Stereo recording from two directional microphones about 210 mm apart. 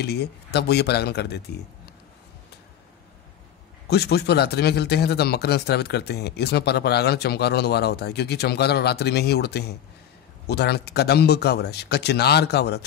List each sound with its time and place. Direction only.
0.0 s speech: 50° left (ahead or behind)
3.8 s speech: 50° left (ahead or behind)